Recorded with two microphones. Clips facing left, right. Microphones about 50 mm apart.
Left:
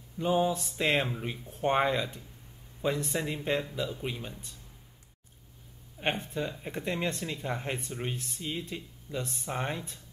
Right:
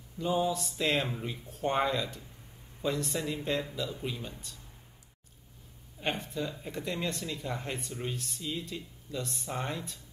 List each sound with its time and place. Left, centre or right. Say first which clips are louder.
0.2 s speech: left 2 dB; left
5.9 s speech: left 2 dB; left